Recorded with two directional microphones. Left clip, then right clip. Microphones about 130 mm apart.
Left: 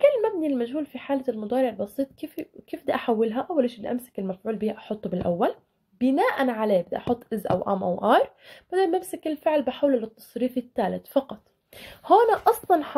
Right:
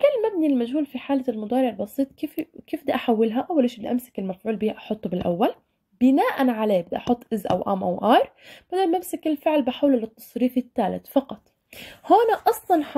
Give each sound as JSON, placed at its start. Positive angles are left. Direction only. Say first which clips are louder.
{"t": 0.0, "sound": "speech", "louder": "right 1 dB", "side_deg": -35}